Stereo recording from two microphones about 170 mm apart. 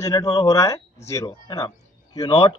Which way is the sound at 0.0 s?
20° left (ahead or behind).